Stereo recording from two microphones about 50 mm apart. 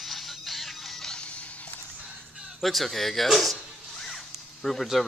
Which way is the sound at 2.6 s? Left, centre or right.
Centre.